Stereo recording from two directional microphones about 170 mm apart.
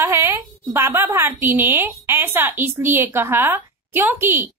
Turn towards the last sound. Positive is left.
turn(degrees=-15)  # may be behind; listen again after turning